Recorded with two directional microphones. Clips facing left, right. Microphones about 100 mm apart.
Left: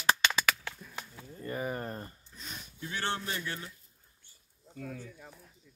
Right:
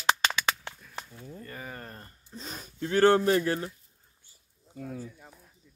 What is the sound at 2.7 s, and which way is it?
Speech, 50° right (ahead or behind).